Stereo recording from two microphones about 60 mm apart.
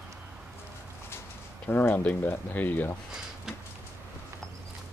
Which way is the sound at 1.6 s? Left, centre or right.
Left.